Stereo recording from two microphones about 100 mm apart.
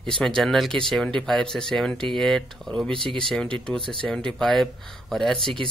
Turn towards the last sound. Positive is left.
turn(degrees=-60)  # may be behind; listen again after turning